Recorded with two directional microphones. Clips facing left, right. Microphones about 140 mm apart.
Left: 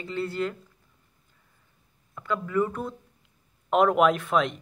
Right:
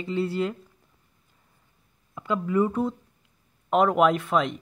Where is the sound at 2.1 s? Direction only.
15° right (ahead or behind).